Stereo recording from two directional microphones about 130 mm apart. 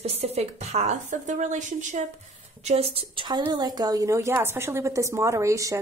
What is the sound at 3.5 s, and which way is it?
A woman's voice, 30° right (ahead or behind).